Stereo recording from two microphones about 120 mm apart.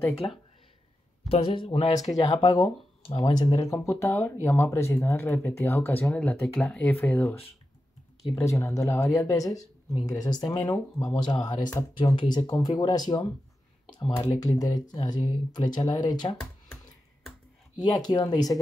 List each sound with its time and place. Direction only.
0.2 s speech: 40° left (ahead or behind)
2.0 s speech: 35° left (ahead or behind); by 7.3 s 15° left (ahead or behind)
8.4 s speech: 25° left (ahead or behind)
17.7 s speech: 35° left (ahead or behind)